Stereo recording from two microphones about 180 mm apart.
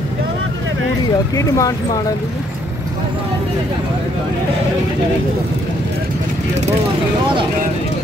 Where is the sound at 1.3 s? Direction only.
20° left (ahead or behind).